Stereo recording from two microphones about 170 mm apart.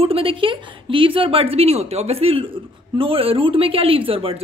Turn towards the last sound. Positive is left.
turn(degrees=-35)  # may be behind; listen again after turning